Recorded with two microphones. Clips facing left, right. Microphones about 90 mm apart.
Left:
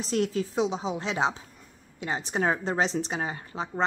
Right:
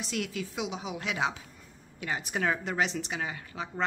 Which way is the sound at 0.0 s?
35° left (ahead or behind).